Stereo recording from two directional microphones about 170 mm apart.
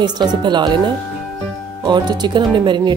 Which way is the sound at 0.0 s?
25° right (ahead or behind).